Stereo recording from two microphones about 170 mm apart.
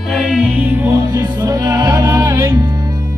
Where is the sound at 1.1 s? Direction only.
25° right (ahead or behind).